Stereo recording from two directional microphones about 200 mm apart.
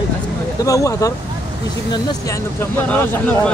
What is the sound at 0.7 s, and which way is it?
Speech, 15° left (ahead or behind).